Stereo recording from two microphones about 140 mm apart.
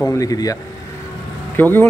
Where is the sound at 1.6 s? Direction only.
15° left (ahead or behind).